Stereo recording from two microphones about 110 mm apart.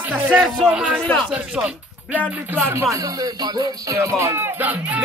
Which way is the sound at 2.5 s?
25° right (ahead or behind).